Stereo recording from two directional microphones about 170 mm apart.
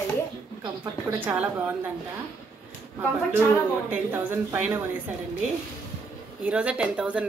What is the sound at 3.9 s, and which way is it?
Speech, 15° right (ahead or behind).